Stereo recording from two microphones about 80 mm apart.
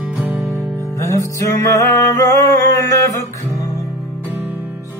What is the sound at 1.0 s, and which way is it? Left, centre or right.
Music, left.